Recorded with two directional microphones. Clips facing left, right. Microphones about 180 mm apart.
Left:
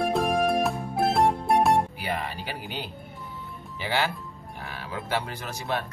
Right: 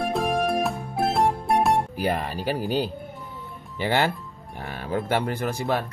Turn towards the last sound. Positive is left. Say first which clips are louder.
# right 6 dB
turn(degrees=-55)  # may be behind; listen again after turning